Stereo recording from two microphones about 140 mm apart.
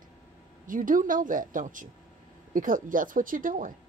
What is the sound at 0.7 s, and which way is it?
A woman's voice, 75° right (ahead or behind).